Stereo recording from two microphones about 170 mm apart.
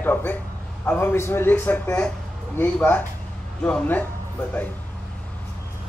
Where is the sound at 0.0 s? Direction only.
10° left (ahead or behind).